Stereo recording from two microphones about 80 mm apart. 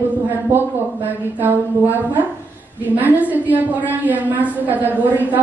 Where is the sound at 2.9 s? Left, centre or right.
Right.